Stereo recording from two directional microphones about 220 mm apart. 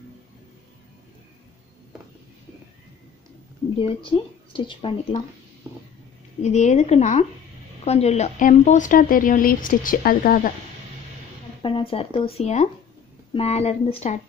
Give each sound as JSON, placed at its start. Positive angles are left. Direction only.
{"t": 4.0, "sound": "speech", "side_deg": 20}
{"t": 6.4, "sound": "speech", "side_deg": 30}
{"t": 11.6, "sound": "speech", "side_deg": 25}